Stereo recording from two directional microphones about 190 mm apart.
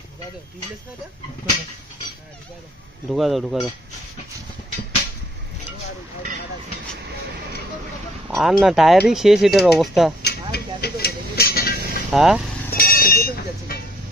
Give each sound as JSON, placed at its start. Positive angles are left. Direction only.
{"t": 3.1, "sound": "speech", "side_deg": 0}
{"t": 8.3, "sound": "speech", "side_deg": 0}
{"t": 10.2, "sound": "vehicle", "side_deg": 55}
{"t": 12.1, "sound": "speech", "side_deg": -5}
{"t": 12.7, "sound": "a sound", "side_deg": 50}